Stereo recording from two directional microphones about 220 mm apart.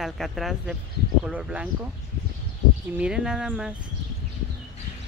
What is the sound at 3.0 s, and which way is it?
Speech, 5° right (ahead or behind).